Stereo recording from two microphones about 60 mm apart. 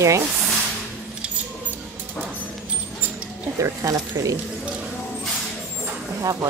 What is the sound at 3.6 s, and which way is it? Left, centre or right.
Speech, right.